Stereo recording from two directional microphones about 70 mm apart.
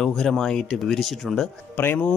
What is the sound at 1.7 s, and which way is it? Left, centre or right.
Speech, left.